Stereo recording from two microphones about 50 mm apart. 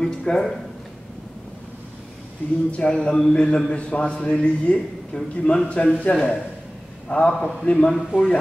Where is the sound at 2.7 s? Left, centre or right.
Left.